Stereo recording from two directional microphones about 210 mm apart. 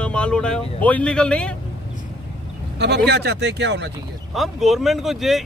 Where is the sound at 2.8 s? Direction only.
55° right (ahead or behind).